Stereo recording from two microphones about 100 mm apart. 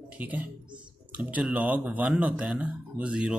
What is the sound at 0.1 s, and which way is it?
Speech, 15° right (ahead or behind).